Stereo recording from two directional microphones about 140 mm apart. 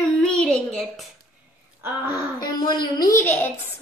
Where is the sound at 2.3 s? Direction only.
30° left (ahead or behind).